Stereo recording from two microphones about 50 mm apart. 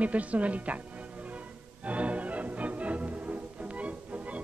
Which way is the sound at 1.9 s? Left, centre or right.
Right.